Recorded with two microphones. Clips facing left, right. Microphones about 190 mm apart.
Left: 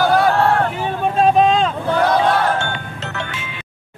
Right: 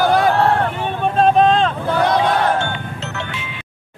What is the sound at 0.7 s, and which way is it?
Vehicle, centre (ahead or behind).